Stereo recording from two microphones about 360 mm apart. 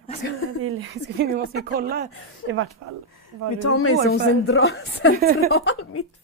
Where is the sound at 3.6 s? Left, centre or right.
Left.